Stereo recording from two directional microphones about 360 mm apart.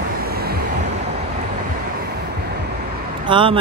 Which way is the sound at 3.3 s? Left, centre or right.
Centre.